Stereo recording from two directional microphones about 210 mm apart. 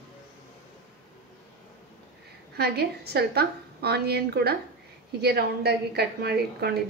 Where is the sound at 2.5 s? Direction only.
50° right (ahead or behind).